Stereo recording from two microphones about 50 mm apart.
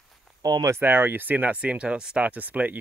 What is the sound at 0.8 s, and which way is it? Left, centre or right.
Speech, right.